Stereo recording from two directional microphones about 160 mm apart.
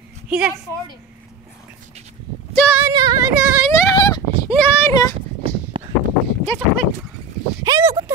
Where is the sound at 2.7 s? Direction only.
20° right (ahead or behind).